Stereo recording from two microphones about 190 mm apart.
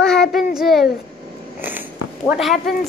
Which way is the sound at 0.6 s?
Centre (ahead or behind).